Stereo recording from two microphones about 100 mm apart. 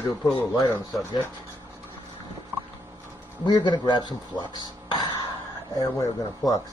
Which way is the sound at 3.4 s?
50° left (ahead or behind).